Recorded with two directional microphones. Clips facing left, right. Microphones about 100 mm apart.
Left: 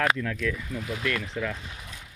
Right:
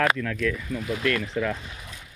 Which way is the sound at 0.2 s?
20° left (ahead or behind).